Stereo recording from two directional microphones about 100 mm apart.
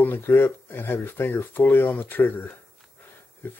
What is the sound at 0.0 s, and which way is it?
Speech, 25° left (ahead or behind).